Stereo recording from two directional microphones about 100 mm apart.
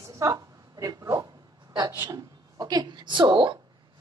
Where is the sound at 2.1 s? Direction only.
40° right (ahead or behind).